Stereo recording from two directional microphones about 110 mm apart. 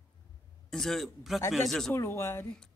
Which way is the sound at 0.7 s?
Centre (ahead or behind).